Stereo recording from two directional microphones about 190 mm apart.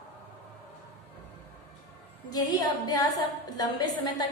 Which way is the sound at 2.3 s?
20° left (ahead or behind).